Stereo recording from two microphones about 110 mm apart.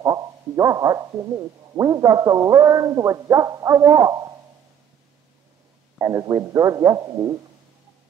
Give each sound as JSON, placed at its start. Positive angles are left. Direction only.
{"t": 0.0, "sound": "speech", "side_deg": -35}
{"t": 5.9, "sound": "a man's voice", "side_deg": -30}